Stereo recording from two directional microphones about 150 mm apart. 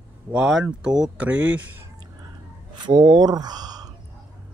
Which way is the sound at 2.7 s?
30° right (ahead or behind).